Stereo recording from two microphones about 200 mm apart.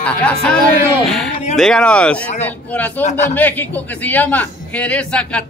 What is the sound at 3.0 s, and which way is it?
Speech, 35° left (ahead or behind).